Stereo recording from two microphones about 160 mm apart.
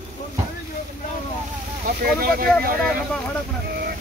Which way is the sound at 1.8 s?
65° right (ahead or behind).